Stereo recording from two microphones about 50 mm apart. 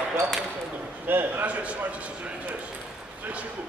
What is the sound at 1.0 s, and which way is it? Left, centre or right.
Speech, right.